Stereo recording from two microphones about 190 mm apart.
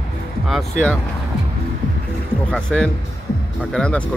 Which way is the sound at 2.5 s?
5° left (ahead or behind).